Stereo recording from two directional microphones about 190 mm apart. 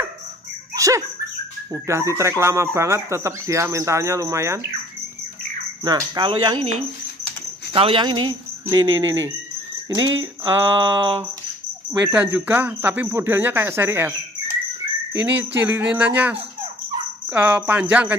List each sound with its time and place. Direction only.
0.7 s a sound: 15° right (ahead or behind)
1.7 s speech: 15° right (ahead or behind)
5.9 s speech: 20° right (ahead or behind)
7.7 s speech: 30° right (ahead or behind)
8.8 s cricket: 90° right
9.8 s speech: 20° right (ahead or behind)
15.5 s speech: 15° right (ahead or behind)